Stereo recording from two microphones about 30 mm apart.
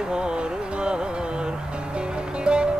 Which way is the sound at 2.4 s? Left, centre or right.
Right.